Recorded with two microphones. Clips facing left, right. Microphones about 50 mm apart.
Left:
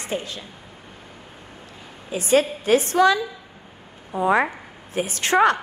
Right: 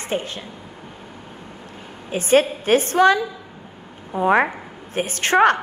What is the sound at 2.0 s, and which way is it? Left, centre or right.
A woman's voice, right.